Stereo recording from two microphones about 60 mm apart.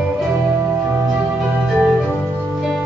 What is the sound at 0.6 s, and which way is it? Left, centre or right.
Music, right.